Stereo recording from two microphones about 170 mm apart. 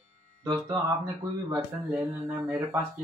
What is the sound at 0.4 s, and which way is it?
Speech, 25° right (ahead or behind).